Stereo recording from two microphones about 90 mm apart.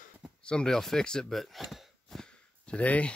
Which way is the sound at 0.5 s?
10° left (ahead or behind).